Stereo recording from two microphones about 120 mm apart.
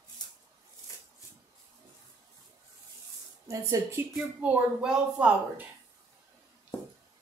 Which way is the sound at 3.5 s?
25° right (ahead or behind).